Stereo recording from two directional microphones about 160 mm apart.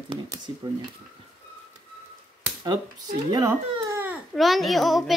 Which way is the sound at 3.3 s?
15° right (ahead or behind).